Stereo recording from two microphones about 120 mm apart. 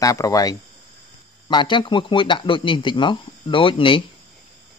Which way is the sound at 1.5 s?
40° left (ahead or behind).